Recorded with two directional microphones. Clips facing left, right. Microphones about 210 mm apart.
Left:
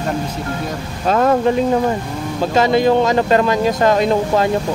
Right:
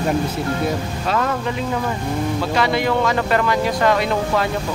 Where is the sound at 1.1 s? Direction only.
35° left (ahead or behind).